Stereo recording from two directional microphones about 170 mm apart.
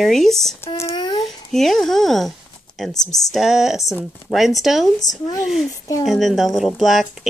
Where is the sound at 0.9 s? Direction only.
25° left (ahead or behind).